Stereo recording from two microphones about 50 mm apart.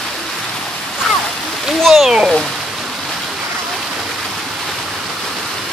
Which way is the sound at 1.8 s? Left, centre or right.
Centre.